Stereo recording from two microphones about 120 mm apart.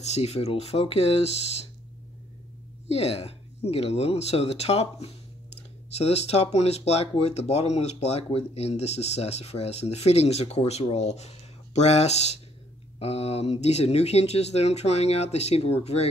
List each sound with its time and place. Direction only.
0.0 s speech: 65° left (ahead or behind)
2.9 s speech: 60° left (ahead or behind)